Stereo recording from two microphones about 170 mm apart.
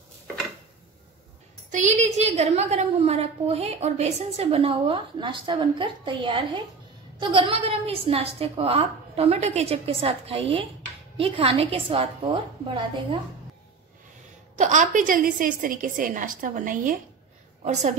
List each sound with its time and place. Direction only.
1.7 s a woman's voice: 45° right (ahead or behind); by 13.2 s 30° right (ahead or behind)
14.6 s a woman's voice: 45° right (ahead or behind)